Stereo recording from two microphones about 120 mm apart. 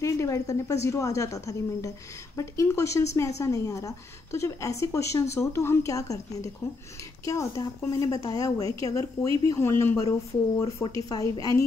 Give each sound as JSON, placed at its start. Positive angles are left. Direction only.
{"t": 0.0, "sound": "a woman's voice", "side_deg": 25}
{"t": 7.2, "sound": "a woman's voice", "side_deg": 25}